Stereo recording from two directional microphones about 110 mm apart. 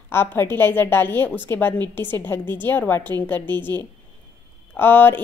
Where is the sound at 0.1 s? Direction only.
20° left (ahead or behind).